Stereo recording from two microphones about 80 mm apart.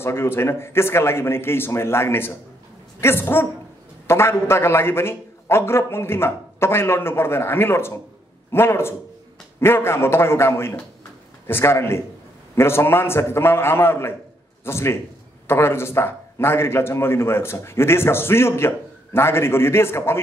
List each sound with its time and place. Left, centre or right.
0.0 s a man's voice: left